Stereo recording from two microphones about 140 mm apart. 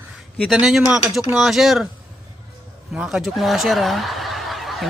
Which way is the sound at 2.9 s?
5° right (ahead or behind).